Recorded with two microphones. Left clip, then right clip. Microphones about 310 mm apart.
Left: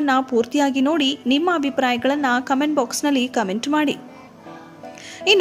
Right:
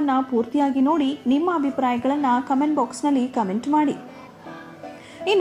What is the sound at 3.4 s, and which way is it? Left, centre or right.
Speech, left.